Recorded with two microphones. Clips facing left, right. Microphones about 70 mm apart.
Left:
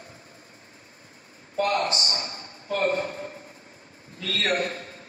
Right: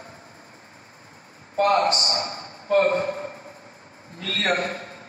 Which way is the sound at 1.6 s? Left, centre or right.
Right.